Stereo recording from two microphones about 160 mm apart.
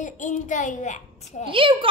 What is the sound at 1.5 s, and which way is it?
Speech, 35° right (ahead or behind).